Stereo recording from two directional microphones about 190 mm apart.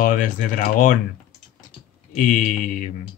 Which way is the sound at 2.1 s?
45° left (ahead or behind).